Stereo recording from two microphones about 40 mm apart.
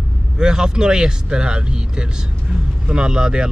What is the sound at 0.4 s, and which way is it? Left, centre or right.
Speech, centre.